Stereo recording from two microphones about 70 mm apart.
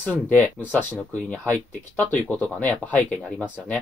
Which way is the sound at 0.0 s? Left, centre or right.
Left.